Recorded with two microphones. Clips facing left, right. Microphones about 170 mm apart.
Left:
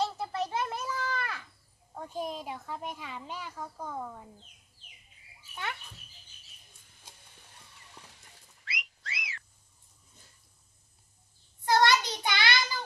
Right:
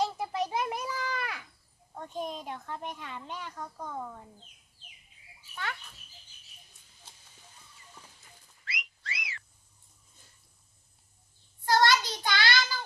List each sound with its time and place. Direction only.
0.0 s a sound: 15° right (ahead or behind)
2.0 s speech: 5° left (ahead or behind)
8.6 s whistling: centre (ahead or behind)
11.6 s child singing: 20° left (ahead or behind)